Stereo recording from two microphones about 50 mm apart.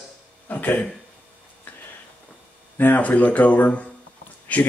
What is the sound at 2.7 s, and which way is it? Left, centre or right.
A man's voice, left.